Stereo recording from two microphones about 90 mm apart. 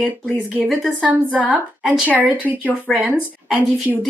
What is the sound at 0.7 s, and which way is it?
Speech, 5° right (ahead or behind).